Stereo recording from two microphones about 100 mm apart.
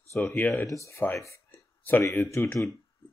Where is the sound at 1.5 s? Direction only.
20° left (ahead or behind).